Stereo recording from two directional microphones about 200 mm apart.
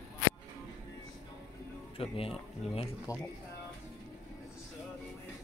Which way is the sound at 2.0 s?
30° left (ahead or behind).